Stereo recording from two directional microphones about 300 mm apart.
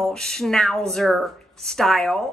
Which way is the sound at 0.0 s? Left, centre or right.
Centre.